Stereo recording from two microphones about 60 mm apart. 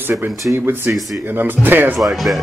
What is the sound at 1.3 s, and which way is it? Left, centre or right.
Speech, right.